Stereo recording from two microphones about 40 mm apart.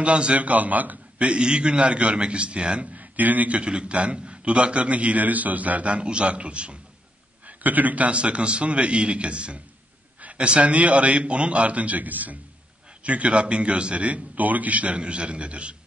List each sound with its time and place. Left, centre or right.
0.0 s a man's voice: right
1.1 s a man's voice: right
3.0 s a man's voice: right
3.6 s a man's voice: right
7.4 s a man's voice: right
13.0 s a man's voice: right